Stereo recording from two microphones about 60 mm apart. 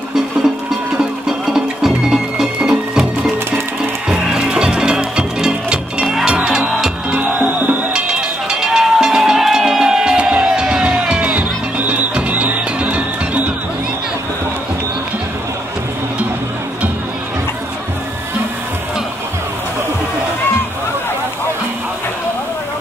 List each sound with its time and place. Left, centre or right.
1.4 s music: centre; by 7.8 s right
7.9 s music: centre